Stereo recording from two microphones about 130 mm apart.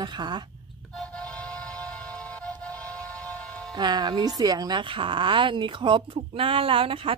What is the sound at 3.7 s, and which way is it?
Speech, 30° right (ahead or behind).